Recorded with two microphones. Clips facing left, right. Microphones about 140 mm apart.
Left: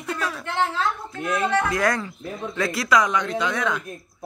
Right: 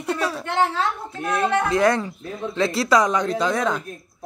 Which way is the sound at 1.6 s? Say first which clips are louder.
Right 4 dB; 25° right (ahead or behind).